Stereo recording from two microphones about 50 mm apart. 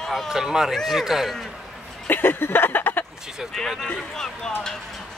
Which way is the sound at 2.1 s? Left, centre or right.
Left.